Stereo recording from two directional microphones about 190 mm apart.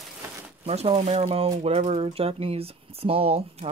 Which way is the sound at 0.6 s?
30° right (ahead or behind).